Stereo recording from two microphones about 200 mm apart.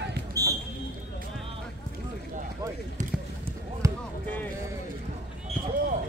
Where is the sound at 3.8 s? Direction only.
15° right (ahead or behind).